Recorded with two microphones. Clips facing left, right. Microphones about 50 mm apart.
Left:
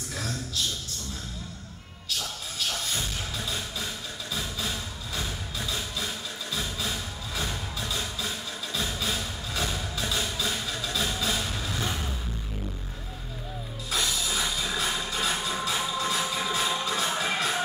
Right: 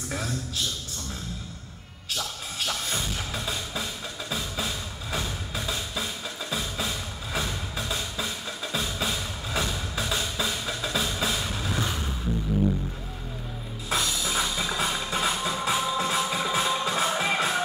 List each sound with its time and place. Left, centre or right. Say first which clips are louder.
7.3 s music: right 2 dB; right
11.1 s vehicle: right 1 dB; right
13.8 s music: right 2 dB; right